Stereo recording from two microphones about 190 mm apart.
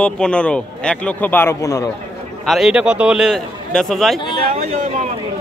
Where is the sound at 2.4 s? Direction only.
Centre (ahead or behind).